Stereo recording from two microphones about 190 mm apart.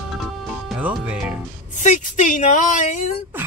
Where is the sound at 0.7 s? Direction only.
5° right (ahead or behind).